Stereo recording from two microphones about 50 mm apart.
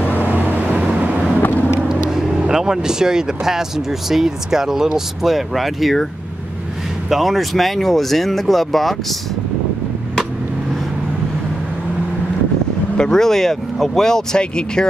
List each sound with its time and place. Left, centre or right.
0.0 s vehicle: left
0.3 s vehicle: right
2.0 s speech: centre
7.1 s speech: centre
12.9 s speech: centre